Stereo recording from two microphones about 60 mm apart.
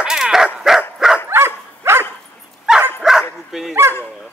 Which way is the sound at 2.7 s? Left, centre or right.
Centre.